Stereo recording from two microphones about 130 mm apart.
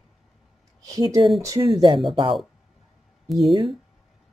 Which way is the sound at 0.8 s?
25° right (ahead or behind).